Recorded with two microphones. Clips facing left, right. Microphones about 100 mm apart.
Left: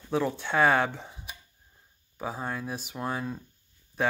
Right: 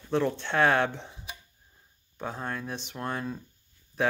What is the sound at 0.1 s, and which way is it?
Speech, 5° left (ahead or behind).